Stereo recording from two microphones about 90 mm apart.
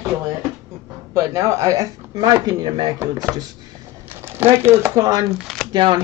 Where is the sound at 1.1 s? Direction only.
35° right (ahead or behind).